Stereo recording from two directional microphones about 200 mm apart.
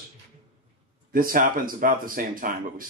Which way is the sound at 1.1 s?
45° right (ahead or behind).